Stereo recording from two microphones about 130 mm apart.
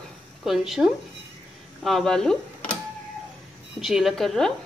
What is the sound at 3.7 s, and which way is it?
Speech, 5° right (ahead or behind).